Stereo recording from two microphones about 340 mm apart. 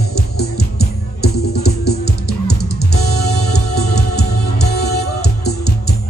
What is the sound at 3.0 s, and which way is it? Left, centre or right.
Music, left.